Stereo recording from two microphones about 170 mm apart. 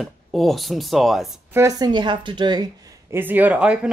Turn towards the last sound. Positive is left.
turn(degrees=-5)  # may be behind; listen again after turning